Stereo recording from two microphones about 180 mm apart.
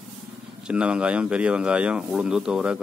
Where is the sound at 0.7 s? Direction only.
5° right (ahead or behind).